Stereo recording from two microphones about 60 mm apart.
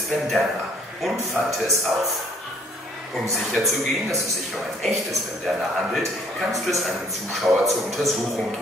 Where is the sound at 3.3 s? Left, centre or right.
Centre.